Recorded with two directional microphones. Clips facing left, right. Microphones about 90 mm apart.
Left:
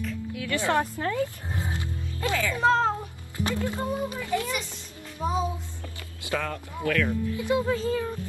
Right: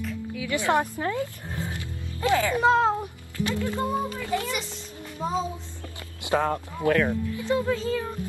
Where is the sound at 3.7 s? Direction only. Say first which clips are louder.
Right 2 dB; 20° left (ahead or behind).